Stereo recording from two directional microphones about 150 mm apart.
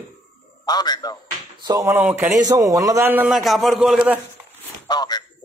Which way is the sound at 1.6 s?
25° right (ahead or behind).